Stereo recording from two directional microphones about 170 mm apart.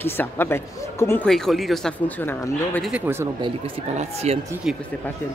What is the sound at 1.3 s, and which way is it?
Speech, centre (ahead or behind).